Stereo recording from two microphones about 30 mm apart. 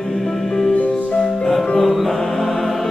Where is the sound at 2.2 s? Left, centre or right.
Centre.